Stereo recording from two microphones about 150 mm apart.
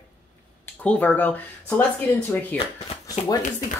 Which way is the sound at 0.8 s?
10° left (ahead or behind).